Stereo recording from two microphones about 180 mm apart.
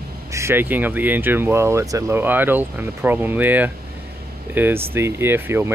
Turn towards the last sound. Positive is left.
turn(degrees=-10)  # may be behind; listen again after turning